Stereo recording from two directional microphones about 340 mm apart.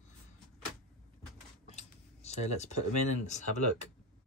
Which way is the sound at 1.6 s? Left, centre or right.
Centre.